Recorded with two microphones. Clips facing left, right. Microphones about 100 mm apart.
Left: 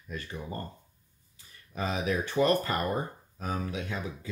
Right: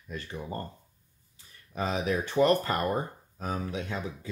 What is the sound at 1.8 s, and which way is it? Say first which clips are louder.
Speech: right 1 dB; 25° right (ahead or behind).